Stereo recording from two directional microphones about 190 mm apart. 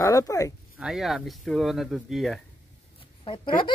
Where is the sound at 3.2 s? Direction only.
25° left (ahead or behind).